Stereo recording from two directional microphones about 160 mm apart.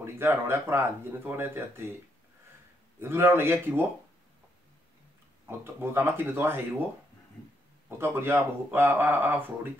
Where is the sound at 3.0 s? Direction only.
15° right (ahead or behind).